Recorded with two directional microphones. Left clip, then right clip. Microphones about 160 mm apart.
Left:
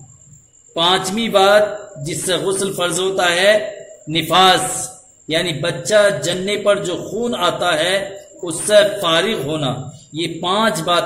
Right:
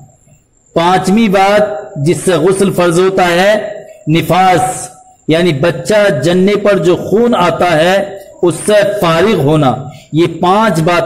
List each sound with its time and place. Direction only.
0.7 s a man's voice: 30° right (ahead or behind)